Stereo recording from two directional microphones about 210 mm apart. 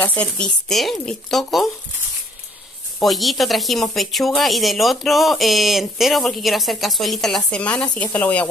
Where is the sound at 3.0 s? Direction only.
Centre (ahead or behind).